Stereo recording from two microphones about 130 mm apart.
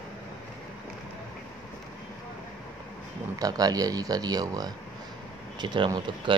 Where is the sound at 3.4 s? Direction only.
30° right (ahead or behind).